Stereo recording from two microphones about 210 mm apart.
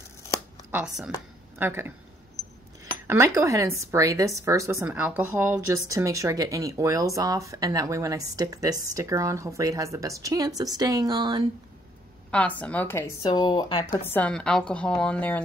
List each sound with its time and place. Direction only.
0.7 s a woman's voice: 5° right (ahead or behind)
2.4 s a sound: 15° left (ahead or behind)
3.1 s a woman's voice: 15° right (ahead or behind)
12.3 s speech: 5° left (ahead or behind)